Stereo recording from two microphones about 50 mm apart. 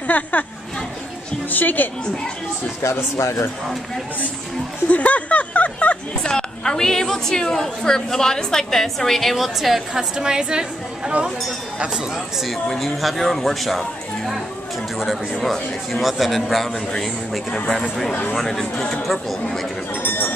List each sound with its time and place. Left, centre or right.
0.0 s speech: left
1.5 s a woman's voice: left
2.8 s speech: left
4.8 s speech: left
6.2 s a woman's voice: centre
10.1 s a woman's voice: centre
11.9 s a man's voice: centre
12.6 s a man's voice: centre
20.0 s a sound: left